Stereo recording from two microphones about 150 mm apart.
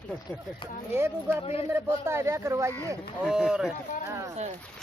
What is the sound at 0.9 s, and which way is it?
Speech, 15° right (ahead or behind).